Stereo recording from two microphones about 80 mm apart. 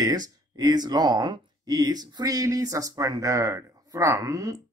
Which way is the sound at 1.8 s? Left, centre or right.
Right.